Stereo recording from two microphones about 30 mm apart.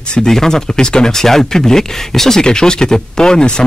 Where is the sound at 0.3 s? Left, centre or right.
Centre.